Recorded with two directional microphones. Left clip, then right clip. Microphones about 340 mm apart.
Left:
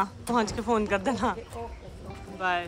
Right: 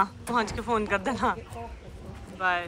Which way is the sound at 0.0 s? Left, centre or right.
Centre.